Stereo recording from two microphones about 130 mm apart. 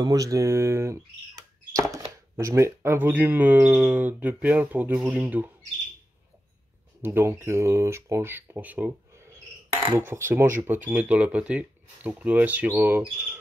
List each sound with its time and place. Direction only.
0.0 s speech: 25° right (ahead or behind)
7.0 s speech: 20° right (ahead or behind)
9.9 s speech: 20° right (ahead or behind)